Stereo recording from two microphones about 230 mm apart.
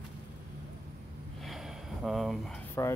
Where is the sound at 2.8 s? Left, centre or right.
Centre.